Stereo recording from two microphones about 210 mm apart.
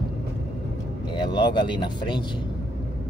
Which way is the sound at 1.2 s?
20° left (ahead or behind).